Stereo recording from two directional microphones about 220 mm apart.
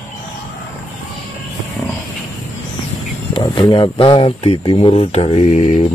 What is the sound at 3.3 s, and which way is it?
Speech, 25° left (ahead or behind).